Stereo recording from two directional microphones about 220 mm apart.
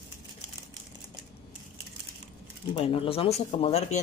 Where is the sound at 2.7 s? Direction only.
25° left (ahead or behind).